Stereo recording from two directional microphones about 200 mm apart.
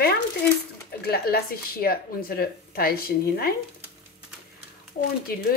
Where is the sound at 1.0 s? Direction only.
50° left (ahead or behind).